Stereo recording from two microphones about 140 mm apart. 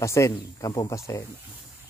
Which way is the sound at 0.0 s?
20° left (ahead or behind).